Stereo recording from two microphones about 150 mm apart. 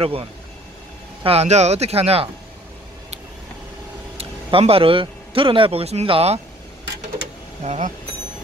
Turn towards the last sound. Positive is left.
turn(degrees=-50)  # may be behind; listen again after turning